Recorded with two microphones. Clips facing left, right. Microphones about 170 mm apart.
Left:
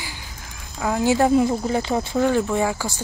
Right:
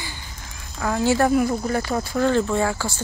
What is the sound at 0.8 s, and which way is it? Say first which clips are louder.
Speech: left 1 dB; 15° left (ahead or behind).